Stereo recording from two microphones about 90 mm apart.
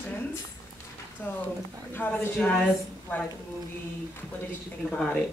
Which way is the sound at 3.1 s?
20° left (ahead or behind).